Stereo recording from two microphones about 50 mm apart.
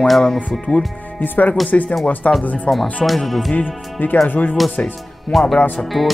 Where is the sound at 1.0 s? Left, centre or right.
Left.